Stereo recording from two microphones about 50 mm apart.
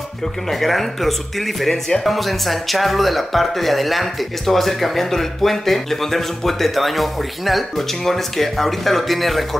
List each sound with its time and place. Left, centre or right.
0.2 s speech: centre